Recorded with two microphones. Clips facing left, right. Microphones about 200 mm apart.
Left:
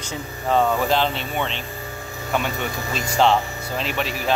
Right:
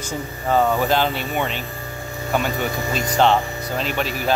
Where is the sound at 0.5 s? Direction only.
5° right (ahead or behind).